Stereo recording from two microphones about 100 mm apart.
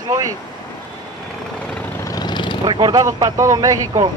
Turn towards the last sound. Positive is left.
turn(degrees=-35)  # may be behind; listen again after turning